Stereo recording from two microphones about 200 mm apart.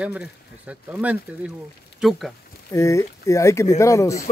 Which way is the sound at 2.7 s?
15° left (ahead or behind).